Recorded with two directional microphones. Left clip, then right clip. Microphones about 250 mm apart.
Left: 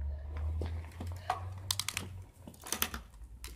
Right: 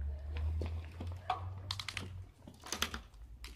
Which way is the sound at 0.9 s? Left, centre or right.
Left.